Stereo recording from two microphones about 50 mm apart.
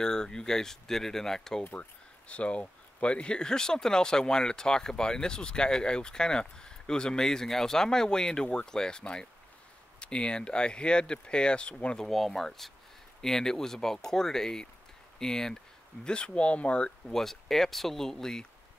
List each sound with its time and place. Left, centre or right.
0.0 s speech: centre
1.8 s speech: left
12.1 s speech: centre; by 16.9 s left
17.1 s speech: centre